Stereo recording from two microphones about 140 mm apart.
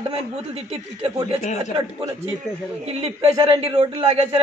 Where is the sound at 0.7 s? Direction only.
45° right (ahead or behind).